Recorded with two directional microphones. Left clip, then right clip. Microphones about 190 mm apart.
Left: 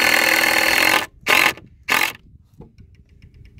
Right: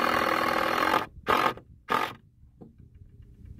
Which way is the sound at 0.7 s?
30° left (ahead or behind).